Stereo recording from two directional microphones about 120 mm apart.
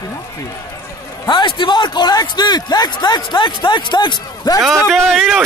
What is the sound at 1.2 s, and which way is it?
A man's voice, 40° left (ahead or behind).